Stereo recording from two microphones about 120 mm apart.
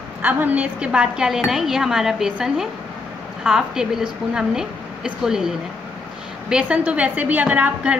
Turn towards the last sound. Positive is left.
turn(degrees=-10)  # may be behind; listen again after turning